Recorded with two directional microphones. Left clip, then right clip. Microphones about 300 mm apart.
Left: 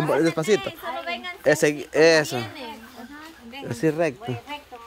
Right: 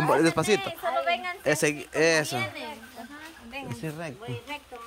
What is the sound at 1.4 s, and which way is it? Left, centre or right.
Speech, centre.